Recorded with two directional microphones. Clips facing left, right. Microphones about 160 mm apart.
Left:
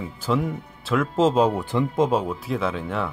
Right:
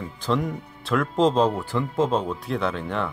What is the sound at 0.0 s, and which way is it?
Speech, 5° left (ahead or behind).